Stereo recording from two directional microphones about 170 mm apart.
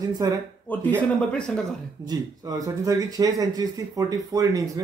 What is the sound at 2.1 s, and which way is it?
Speech, 20° right (ahead or behind).